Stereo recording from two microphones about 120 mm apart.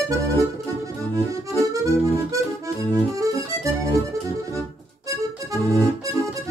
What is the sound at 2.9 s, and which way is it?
Accordion, 30° right (ahead or behind).